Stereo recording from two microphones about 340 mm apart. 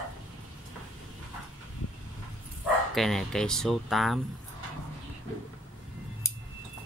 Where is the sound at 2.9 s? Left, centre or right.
Centre.